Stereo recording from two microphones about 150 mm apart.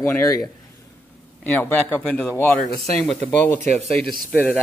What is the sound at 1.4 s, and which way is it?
Speech, 10° left (ahead or behind).